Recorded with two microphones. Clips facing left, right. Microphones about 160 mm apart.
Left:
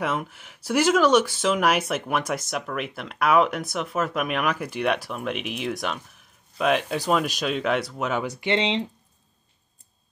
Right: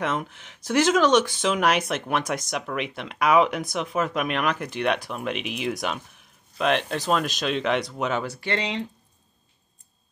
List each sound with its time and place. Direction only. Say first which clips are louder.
0.0 s speech: even; 5° left (ahead or behind)
8.3 s speech: left 4 dB; 20° left (ahead or behind)